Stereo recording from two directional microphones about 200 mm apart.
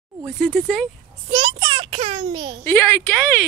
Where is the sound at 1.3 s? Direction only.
20° right (ahead or behind).